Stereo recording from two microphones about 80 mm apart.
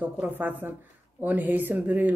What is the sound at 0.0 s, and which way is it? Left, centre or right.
Speech, right.